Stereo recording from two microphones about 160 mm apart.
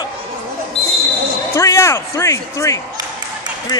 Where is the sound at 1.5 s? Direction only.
20° left (ahead or behind).